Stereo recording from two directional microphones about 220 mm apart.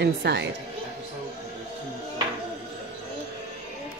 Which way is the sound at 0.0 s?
50° right (ahead or behind).